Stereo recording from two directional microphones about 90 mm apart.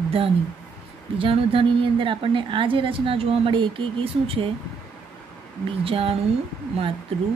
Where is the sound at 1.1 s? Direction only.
80° right.